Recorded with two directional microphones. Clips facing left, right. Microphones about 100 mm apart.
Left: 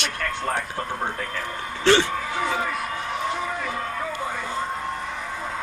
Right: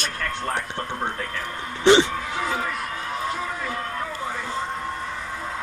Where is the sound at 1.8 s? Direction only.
20° right (ahead or behind).